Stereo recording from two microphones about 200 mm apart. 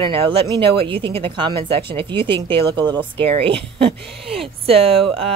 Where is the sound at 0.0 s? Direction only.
25° right (ahead or behind).